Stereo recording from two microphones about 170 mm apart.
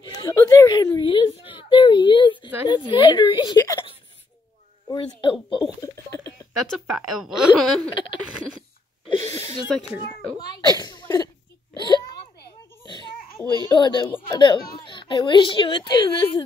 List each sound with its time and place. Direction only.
0.0 s whimper: 25° left (ahead or behind)
2.7 s a child's voice: 25° left (ahead or behind)
4.8 s a child's voice: 30° left (ahead or behind)
5.8 s a sound: 20° left (ahead or behind)
6.9 s a woman's voice: centre (ahead or behind)
7.9 s a child's voice: 25° left (ahead or behind)
9.1 s a sound: 20° left (ahead or behind)
10.8 s cough: 20° left (ahead or behind)
11.7 s a sound: 25° left (ahead or behind)
13.7 s a child's voice: 25° left (ahead or behind)